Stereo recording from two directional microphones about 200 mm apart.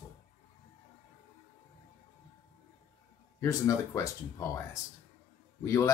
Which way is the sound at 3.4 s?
15° left (ahead or behind).